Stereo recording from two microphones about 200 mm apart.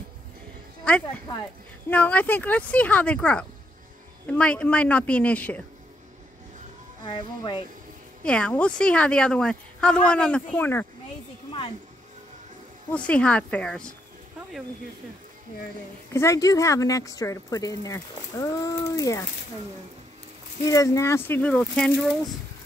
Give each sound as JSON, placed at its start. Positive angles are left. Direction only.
{"t": 0.9, "sound": "speech", "side_deg": 5}
{"t": 7.1, "sound": "speech", "side_deg": 25}
{"t": 8.2, "sound": "a woman's voice", "side_deg": 5}
{"t": 12.9, "sound": "a woman's voice", "side_deg": 5}
{"t": 16.1, "sound": "speech", "side_deg": 15}
{"t": 20.6, "sound": "speech", "side_deg": 15}